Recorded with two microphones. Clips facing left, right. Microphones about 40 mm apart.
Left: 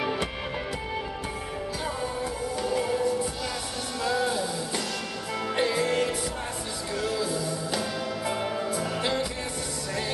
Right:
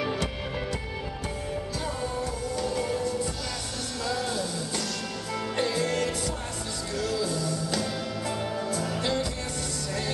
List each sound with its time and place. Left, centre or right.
0.0 s music: centre
2.5 s music: centre
4.0 s music: centre